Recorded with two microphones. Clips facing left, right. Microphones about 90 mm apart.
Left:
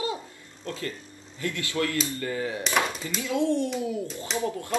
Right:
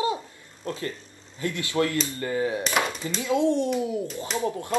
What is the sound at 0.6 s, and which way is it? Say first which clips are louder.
Speech: right 2 dB; 25° right (ahead or behind).